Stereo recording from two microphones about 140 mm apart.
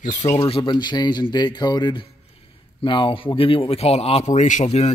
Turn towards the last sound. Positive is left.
turn(degrees=50)  # may be behind; listen again after turning